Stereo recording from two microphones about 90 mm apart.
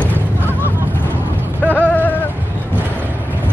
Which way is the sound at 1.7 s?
20° left (ahead or behind).